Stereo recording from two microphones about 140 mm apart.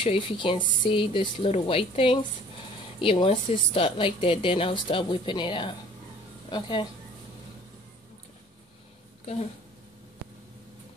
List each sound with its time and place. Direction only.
0.0 s a woman's voice: 40° left (ahead or behind)
9.2 s a woman's voice: 50° left (ahead or behind)